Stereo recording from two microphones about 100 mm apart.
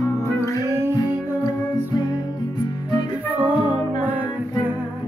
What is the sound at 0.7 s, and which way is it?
Music, 25° right (ahead or behind).